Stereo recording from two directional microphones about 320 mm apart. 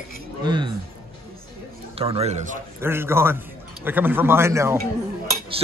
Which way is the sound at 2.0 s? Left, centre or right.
Centre.